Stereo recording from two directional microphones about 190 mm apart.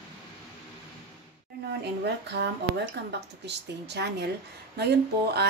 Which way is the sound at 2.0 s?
60° right (ahead or behind).